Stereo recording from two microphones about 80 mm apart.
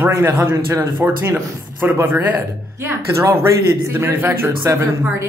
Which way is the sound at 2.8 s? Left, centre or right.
Right.